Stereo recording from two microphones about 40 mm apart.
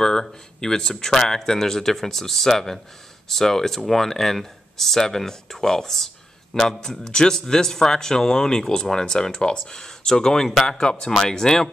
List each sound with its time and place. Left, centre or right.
0.0 s speech: centre